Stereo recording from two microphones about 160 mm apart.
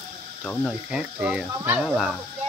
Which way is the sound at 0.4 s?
Centre (ahead or behind).